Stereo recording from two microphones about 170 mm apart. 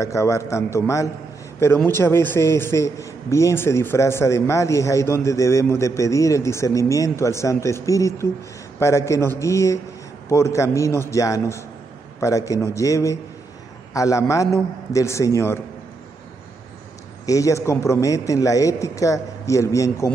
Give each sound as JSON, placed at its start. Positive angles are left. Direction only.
{"t": 0.0, "sound": "a man's voice", "side_deg": 15}
{"t": 17.3, "sound": "a man's voice", "side_deg": 20}